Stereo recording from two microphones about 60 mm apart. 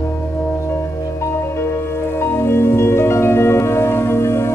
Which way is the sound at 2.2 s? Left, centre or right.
Left.